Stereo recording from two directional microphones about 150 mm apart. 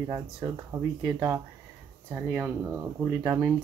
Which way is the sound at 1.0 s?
25° right (ahead or behind).